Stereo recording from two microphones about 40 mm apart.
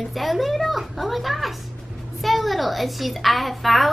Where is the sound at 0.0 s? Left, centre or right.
Centre.